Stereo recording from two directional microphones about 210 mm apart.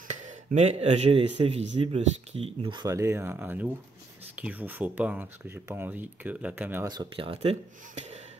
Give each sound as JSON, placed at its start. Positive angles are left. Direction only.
{"t": 0.1, "sound": "speech", "side_deg": -35}